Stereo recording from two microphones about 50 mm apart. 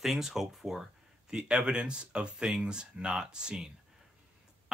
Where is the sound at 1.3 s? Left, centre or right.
Centre.